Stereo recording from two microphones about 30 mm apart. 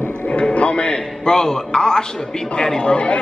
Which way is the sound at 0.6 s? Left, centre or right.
Left.